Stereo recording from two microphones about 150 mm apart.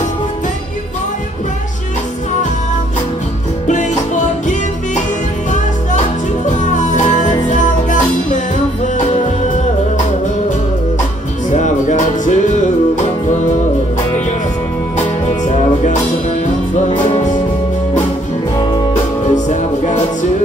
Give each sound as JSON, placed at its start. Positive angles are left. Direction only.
{"t": 3.6, "sound": "music", "side_deg": 55}
{"t": 6.4, "sound": "music", "side_deg": 55}
{"t": 11.5, "sound": "music", "side_deg": 55}
{"t": 15.4, "sound": "music", "side_deg": 50}
{"t": 19.5, "sound": "music", "side_deg": 55}